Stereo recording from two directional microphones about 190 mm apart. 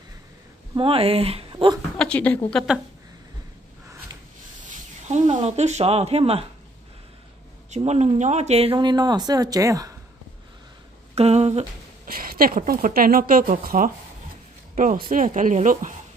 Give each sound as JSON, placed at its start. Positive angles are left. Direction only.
{"t": 0.7, "sound": "speech", "side_deg": -30}
{"t": 2.0, "sound": "a woman's voice", "side_deg": 5}
{"t": 4.6, "sound": "speech", "side_deg": -35}
{"t": 7.7, "sound": "speech", "side_deg": -35}
{"t": 11.1, "sound": "humming", "side_deg": -35}
{"t": 12.1, "sound": "speech", "side_deg": -50}